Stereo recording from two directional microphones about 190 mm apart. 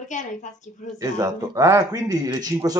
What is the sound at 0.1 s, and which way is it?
Speech, 40° left (ahead or behind).